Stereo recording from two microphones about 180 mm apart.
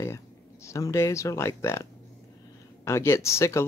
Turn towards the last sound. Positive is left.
turn(degrees=15)  # may be behind; listen again after turning